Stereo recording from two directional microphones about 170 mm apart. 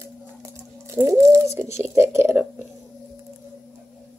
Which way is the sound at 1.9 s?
15° right (ahead or behind).